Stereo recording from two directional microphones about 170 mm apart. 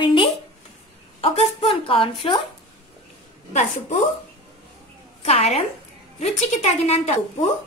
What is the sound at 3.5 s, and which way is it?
Speech, 45° left (ahead or behind).